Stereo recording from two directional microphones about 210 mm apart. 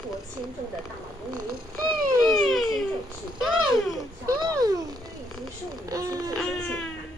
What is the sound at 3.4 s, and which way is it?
Babbling, centre (ahead or behind).